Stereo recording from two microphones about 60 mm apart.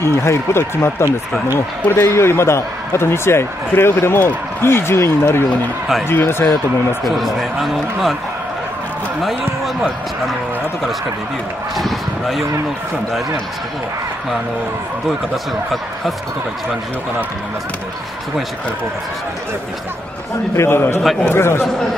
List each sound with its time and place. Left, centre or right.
0.0 s a man's voice: left
7.1 s a man's voice: centre
11.7 s speech: centre
20.5 s a man's voice: left